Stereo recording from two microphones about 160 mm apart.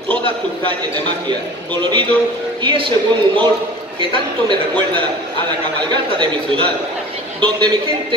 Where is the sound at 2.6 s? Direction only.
30° right (ahead or behind).